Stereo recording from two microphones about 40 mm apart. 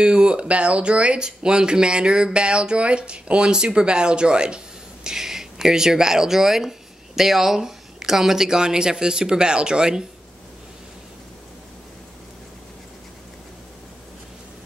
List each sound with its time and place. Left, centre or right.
0.0 s speech: right
5.0 s speech: centre